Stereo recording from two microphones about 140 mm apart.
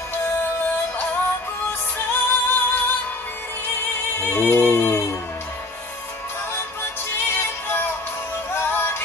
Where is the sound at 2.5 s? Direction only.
15° left (ahead or behind).